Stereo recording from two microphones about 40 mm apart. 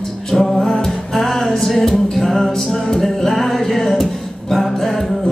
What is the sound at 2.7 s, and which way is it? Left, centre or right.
Music, centre.